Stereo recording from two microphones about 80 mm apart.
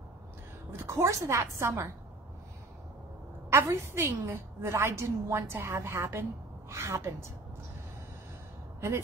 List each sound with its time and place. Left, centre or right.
0.8 s a woman's voice: right
3.4 s a woman's voice: right